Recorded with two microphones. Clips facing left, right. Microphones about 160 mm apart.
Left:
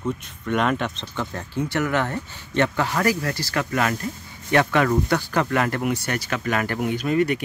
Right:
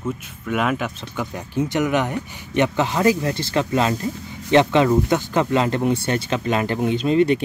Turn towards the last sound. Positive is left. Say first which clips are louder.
# right 4 dB
turn(degrees=-25)  # may be behind; listen again after turning